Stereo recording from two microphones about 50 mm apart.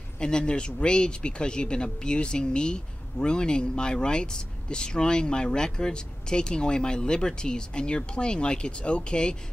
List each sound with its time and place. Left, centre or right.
0.2 s speech: centre